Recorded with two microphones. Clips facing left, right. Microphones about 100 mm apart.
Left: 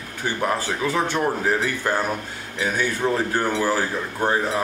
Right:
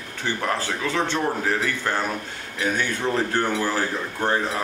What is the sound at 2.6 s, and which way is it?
A man's voice, 10° left (ahead or behind).